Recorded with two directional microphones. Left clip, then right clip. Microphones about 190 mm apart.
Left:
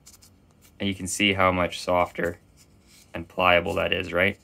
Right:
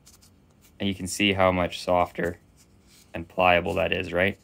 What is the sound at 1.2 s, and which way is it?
Speech, 15° right (ahead or behind).